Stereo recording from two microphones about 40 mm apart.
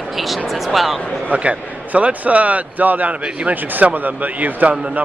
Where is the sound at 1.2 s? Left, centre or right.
Right.